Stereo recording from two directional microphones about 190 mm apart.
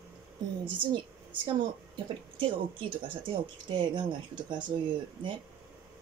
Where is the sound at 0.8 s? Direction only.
25° right (ahead or behind).